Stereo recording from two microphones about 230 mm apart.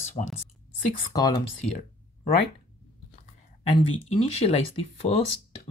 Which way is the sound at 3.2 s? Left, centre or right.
Left.